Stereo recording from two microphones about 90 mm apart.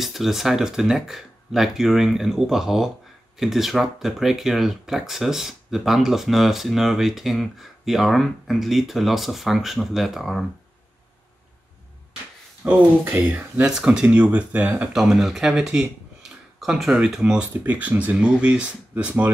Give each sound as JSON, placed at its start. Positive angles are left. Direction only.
{"t": 0.0, "sound": "speech", "side_deg": 0}
{"t": 12.6, "sound": "speech", "side_deg": -15}
{"t": 13.6, "sound": "speech", "side_deg": -5}
{"t": 14.7, "sound": "speech", "side_deg": -5}